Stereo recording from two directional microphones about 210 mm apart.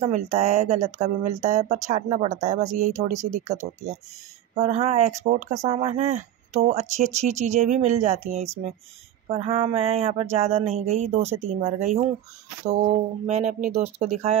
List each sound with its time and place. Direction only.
0.0 s speech: 30° right (ahead or behind)
4.6 s speech: 30° right (ahead or behind)
9.3 s a sound: 30° right (ahead or behind)
12.6 s speech: 30° right (ahead or behind)